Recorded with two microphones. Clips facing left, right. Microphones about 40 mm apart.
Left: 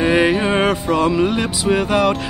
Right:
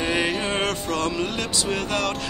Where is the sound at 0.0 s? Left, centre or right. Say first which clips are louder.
Left 8 dB; centre.